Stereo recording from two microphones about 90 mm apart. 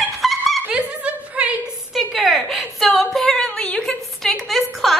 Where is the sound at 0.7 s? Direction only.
15° right (ahead or behind).